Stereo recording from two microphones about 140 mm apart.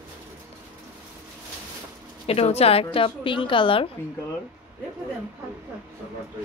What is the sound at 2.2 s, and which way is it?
A woman's voice, 45° left (ahead or behind).